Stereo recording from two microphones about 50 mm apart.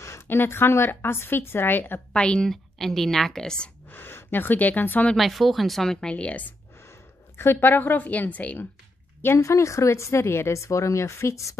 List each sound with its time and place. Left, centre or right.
0.3 s speech: left
2.1 s a woman's voice: centre
2.5 s a woman's voice: centre
3.9 s speech: left
5.1 s speech: centre; by 6.4 s left
6.8 s a woman's voice: left
9.4 s speech: left